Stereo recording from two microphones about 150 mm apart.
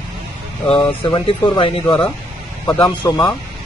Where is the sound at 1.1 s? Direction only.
35° left (ahead or behind).